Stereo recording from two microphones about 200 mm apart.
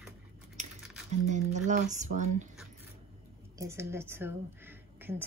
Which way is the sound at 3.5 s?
15° right (ahead or behind).